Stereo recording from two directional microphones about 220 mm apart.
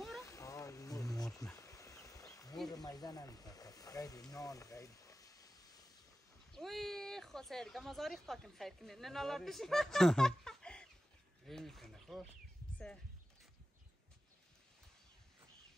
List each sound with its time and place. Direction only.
0.2 s wild animals: 15° left (ahead or behind)
2.7 s speech: 15° left (ahead or behind)
6.5 s a woman's voice: centre (ahead or behind)